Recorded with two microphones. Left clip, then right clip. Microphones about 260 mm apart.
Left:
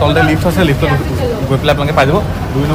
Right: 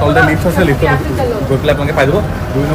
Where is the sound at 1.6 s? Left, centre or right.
Centre.